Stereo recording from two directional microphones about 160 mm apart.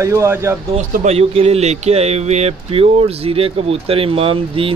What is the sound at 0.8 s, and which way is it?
Speech, 45° right (ahead or behind).